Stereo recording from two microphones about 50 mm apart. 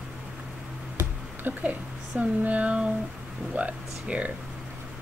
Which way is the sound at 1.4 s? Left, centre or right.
Right.